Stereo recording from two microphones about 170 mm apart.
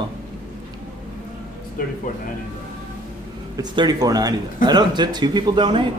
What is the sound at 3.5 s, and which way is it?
A man's voice, 25° right (ahead or behind).